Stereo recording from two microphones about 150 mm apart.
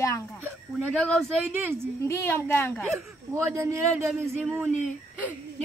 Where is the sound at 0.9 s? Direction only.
5° left (ahead or behind).